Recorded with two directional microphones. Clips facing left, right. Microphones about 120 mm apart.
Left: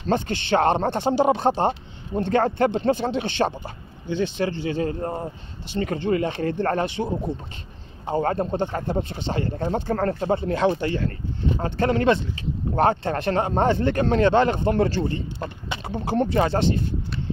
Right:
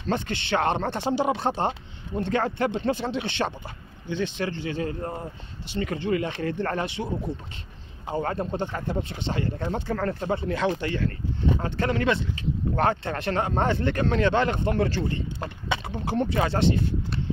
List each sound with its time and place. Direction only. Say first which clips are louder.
0.1 s speech: left 5 dB; 40° left (ahead or behind)
8.1 s speech: left 5 dB; 40° left (ahead or behind)